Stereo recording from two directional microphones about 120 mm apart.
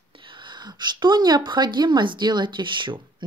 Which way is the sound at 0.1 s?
45° right (ahead or behind).